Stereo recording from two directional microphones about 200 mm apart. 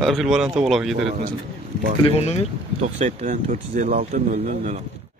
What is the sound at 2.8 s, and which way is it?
Speech, 35° right (ahead or behind).